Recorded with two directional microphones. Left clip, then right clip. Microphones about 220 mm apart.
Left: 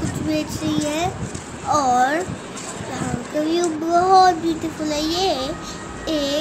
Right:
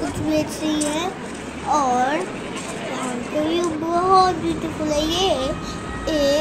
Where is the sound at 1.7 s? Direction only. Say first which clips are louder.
Left 2 dB; 20° left (ahead or behind).